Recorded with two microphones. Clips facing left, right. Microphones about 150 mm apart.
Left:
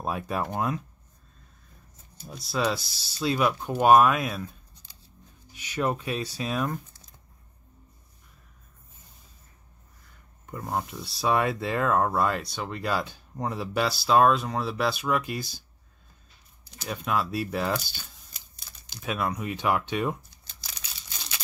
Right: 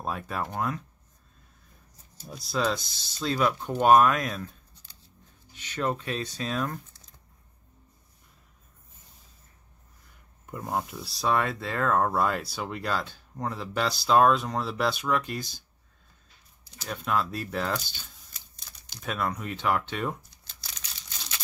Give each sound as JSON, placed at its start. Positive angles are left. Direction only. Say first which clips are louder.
{"t": 0.0, "sound": "speech", "louder": "left 3 dB", "side_deg": 10}
{"t": 2.2, "sound": "speech", "louder": "left 1 dB", "side_deg": 0}
{"t": 5.5, "sound": "speech", "louder": "left 2 dB", "side_deg": 10}
{"t": 10.4, "sound": "speech", "louder": "even", "side_deg": -5}
{"t": 12.9, "sound": "speech", "louder": "left 2 dB", "side_deg": 15}
{"t": 16.6, "sound": "a sound", "louder": "left 3 dB", "side_deg": 60}
{"t": 16.9, "sound": "speech", "louder": "left 1 dB", "side_deg": 5}